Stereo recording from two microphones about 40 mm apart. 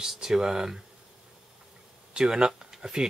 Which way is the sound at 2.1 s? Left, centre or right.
Right.